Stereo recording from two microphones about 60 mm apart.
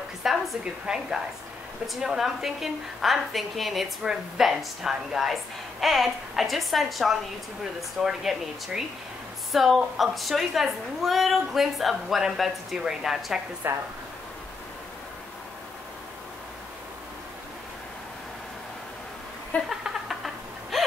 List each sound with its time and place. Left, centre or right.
0.2 s a woman's voice: centre
13.6 s speech: right
19.7 s a sound: centre